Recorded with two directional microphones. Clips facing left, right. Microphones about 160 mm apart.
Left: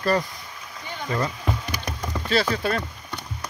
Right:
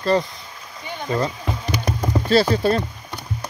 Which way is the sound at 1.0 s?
25° right (ahead or behind).